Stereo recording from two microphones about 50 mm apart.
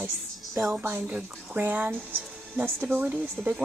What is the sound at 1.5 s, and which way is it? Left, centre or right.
Speech, right.